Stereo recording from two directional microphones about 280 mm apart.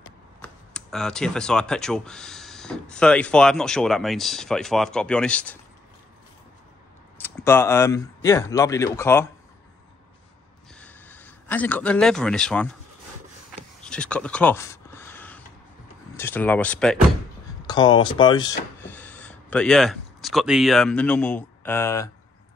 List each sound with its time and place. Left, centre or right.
0.4 s speech: centre
7.2 s speech: centre
10.7 s a sound: centre
13.8 s a sound: centre
16.2 s speech: centre
17.6 s speech: centre